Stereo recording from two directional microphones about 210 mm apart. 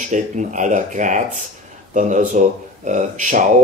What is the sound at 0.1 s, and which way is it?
Speech, 35° right (ahead or behind).